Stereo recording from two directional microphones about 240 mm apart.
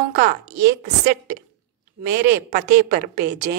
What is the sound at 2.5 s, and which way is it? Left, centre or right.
A woman's voice, right.